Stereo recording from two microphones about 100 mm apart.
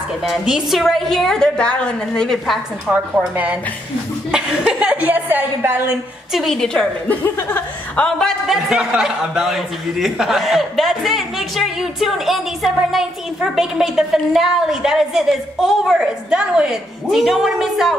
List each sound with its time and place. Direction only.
0.2 s a man's voice: centre (ahead or behind)
2.9 s speech: 15° right (ahead or behind)
4.3 s a sound: 5° right (ahead or behind)
6.3 s a man's voice: 5° left (ahead or behind)
7.2 s speech: 20° left (ahead or behind)
8.0 s a man's voice: 5° left (ahead or behind)